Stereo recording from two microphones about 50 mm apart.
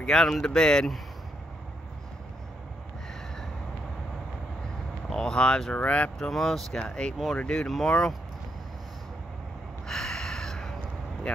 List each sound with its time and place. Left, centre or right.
0.0 s speech: centre
5.1 s speech: centre
6.1 s speech: centre
9.8 s a sound: centre
11.3 s speech: centre